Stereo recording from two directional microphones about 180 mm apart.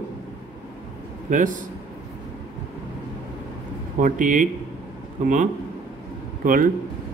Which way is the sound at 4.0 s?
45° right (ahead or behind).